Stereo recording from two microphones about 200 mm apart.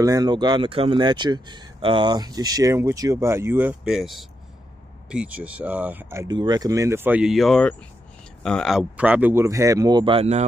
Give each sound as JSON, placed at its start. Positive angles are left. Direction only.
{"t": 0.0, "sound": "speech", "side_deg": -20}